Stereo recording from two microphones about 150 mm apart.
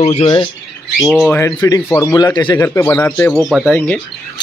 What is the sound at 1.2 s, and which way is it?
Speech, 15° left (ahead or behind).